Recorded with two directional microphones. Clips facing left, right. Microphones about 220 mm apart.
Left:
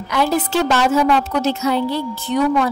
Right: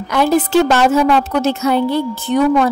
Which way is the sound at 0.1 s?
50° right (ahead or behind).